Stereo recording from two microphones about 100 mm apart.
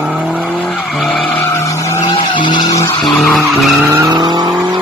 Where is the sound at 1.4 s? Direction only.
30° left (ahead or behind).